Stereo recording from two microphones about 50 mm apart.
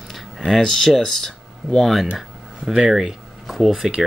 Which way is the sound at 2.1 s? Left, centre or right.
Centre.